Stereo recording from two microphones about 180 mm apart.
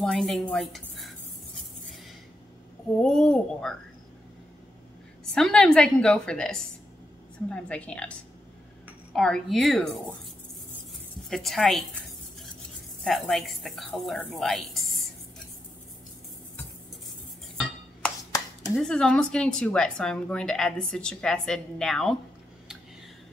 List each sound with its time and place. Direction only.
0.0 s speech: centre (ahead or behind)
3.0 s speech: 5° left (ahead or behind)
5.2 s a woman's voice: 5° left (ahead or behind)
9.1 s speech: 5° left (ahead or behind)
11.2 s speech: centre (ahead or behind)
18.8 s speech: 5° left (ahead or behind)